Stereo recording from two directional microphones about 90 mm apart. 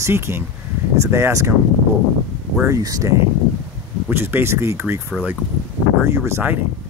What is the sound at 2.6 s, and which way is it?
Speech, 40° right (ahead or behind).